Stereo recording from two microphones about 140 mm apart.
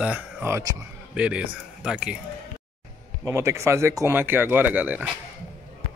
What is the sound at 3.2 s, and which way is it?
Speech, 20° right (ahead or behind).